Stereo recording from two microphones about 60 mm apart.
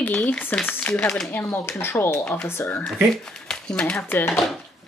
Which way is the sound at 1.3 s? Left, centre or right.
Left.